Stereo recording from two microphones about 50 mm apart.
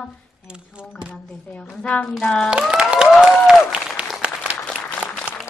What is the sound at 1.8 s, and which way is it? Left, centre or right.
Speech, centre.